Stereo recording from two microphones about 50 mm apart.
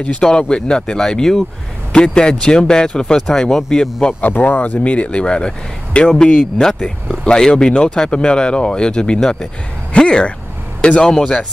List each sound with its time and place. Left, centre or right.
0.2 s speech: centre
4.2 s speech: left; by 11.2 s centre